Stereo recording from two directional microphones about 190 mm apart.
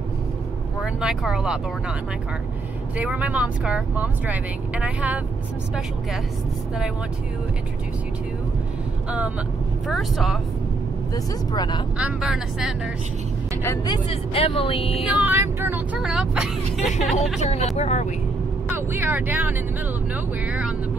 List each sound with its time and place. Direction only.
0.7 s speech: centre (ahead or behind)
3.0 s speech: 5° right (ahead or behind)
9.8 s speech: centre (ahead or behind)
11.5 s speech: 25° left (ahead or behind)
12.0 s speech: 5° right (ahead or behind)
13.7 s speech: 25° left (ahead or behind)
15.1 s speech: 10° right (ahead or behind)
16.8 s speech: 40° left (ahead or behind)
18.7 s speech: 10° right (ahead or behind)